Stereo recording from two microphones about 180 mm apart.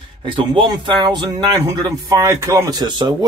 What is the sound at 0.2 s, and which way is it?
A man's voice, 30° right (ahead or behind).